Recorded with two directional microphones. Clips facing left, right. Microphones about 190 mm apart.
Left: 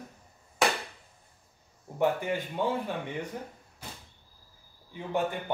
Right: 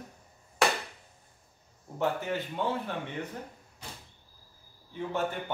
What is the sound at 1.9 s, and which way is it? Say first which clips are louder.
Speech: left 3 dB; 15° left (ahead or behind).